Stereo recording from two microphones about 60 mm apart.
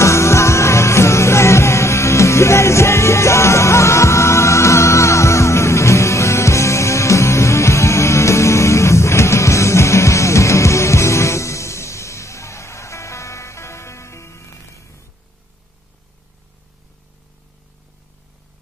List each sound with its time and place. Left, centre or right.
0.0 s music: left